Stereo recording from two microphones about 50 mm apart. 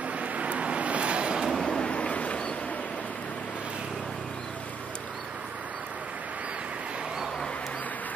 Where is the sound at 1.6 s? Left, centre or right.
Centre.